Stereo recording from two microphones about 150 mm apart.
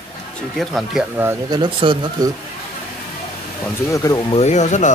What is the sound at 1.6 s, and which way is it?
Speech, 35° right (ahead or behind).